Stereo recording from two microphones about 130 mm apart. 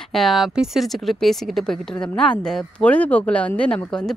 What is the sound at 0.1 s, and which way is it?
A woman's voice, centre (ahead or behind).